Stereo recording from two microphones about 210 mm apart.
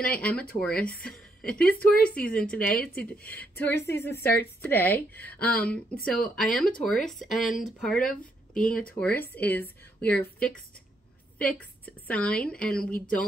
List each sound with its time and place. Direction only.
0.0 s speech: 5° left (ahead or behind)
1.1 s a sound: 5° left (ahead or behind)
1.6 s speech: 45° left (ahead or behind)
2.0 s a woman's voice: 5° left (ahead or behind)
2.6 s speech: 45° left (ahead or behind)
3.0 s a woman's voice: 5° left (ahead or behind)